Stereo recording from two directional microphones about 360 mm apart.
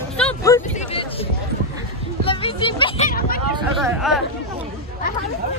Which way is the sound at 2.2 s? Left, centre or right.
Centre.